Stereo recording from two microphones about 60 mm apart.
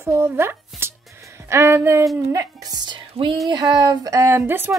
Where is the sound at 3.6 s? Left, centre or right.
Right.